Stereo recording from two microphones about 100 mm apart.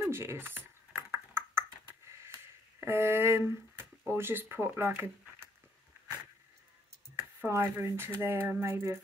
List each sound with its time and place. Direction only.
0.0 s computer keyboard: 25° right (ahead or behind)
2.8 s speech: 25° right (ahead or behind)
7.2 s speech: 25° right (ahead or behind)